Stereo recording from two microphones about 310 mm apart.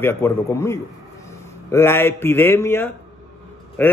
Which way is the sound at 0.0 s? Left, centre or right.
Centre.